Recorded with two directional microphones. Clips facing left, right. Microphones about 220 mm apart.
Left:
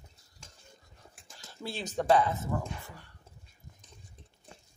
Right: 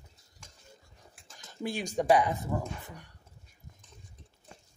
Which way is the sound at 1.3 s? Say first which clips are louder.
Right 4 dB; 15° right (ahead or behind).